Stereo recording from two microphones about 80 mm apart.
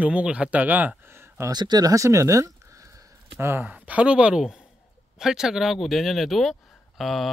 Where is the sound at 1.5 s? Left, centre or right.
Right.